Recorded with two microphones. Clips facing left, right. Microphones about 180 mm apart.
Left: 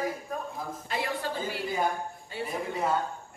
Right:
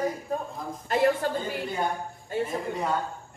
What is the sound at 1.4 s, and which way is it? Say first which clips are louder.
Speech: right 1 dB; centre (ahead or behind).